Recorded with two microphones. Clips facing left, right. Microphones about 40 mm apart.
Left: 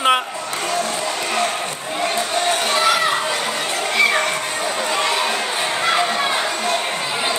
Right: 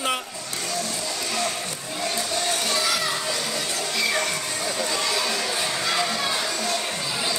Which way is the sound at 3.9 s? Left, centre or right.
Left.